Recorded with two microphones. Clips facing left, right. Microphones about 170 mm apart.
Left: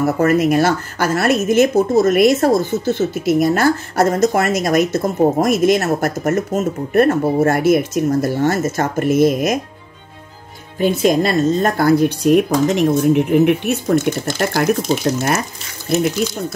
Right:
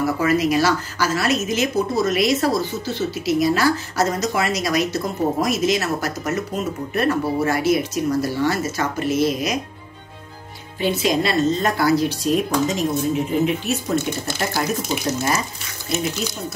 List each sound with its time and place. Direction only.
0.0 s speech: 50° left (ahead or behind)
10.8 s speech: 50° left (ahead or behind)
16.2 s speech: 60° left (ahead or behind)